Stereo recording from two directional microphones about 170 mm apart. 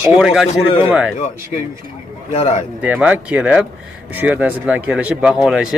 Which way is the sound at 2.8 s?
10° right (ahead or behind).